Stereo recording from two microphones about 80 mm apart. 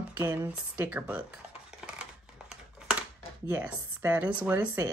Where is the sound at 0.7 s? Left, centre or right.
Centre.